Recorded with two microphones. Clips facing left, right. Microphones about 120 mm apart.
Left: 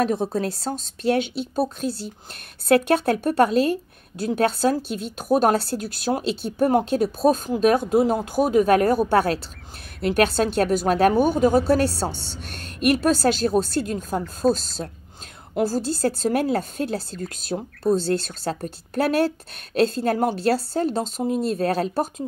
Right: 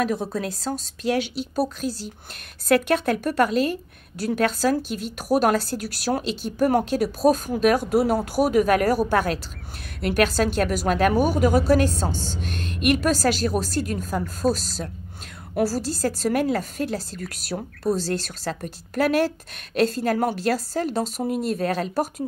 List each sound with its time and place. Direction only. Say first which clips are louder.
0.0 s a woman's voice: left 3 dB; 25° left (ahead or behind)
14.2 s speech: left 3 dB; centre (ahead or behind)
15.5 s a woman's voice: left 1 dB; 25° left (ahead or behind)